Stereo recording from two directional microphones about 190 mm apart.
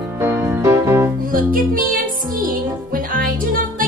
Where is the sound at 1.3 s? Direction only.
50° right (ahead or behind).